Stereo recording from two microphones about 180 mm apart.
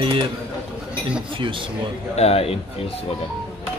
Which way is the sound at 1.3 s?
30° right (ahead or behind).